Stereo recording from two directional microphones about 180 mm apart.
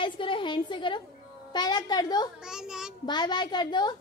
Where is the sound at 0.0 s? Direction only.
25° left (ahead or behind).